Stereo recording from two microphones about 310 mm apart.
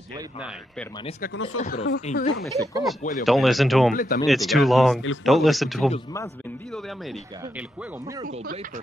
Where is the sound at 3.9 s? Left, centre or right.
Left.